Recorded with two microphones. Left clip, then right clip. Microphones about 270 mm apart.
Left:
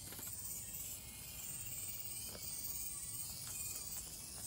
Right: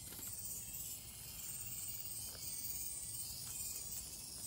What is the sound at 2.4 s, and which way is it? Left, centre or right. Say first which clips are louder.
Music: even; centre.